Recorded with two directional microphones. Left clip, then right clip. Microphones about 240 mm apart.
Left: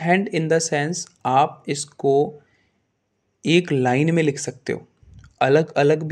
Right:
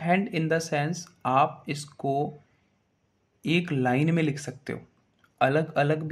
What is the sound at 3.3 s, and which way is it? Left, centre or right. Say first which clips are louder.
Speech: left 8 dB; left.